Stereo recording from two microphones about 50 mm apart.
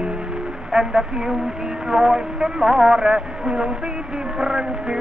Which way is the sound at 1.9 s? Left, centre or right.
Centre.